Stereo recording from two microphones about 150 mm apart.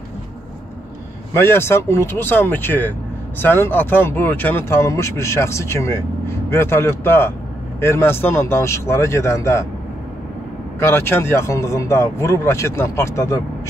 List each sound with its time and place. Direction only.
1.3 s speech: 15° left (ahead or behind)
10.8 s speech: 15° left (ahead or behind)